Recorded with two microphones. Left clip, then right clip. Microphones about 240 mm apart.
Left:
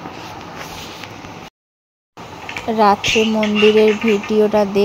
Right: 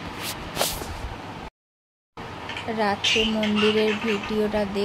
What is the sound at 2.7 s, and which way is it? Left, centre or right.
Speech, left.